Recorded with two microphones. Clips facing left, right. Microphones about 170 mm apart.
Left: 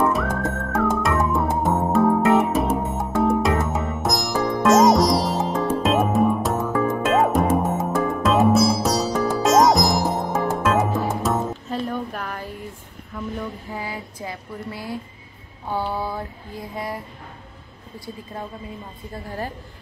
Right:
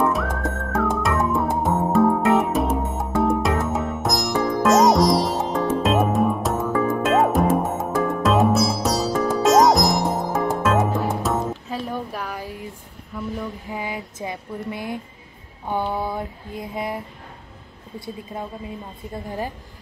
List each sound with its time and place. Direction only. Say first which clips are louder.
0.0 s music: left 1 dB; centre (ahead or behind)
13.7 s a sound: right 2 dB; 20° right (ahead or behind)
15.7 s female singing: right 1 dB; 20° right (ahead or behind)
19.2 s a woman's voice: right 1 dB; 15° right (ahead or behind)